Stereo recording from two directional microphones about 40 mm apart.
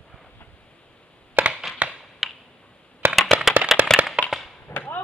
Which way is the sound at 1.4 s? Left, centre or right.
Right.